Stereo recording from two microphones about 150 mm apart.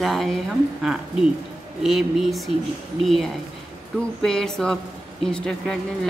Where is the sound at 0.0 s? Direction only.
Centre (ahead or behind).